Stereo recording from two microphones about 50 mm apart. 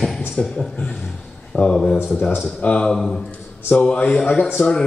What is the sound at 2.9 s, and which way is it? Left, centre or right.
Speech, centre.